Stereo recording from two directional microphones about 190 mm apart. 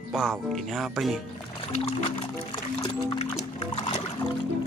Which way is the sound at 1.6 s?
30° left (ahead or behind).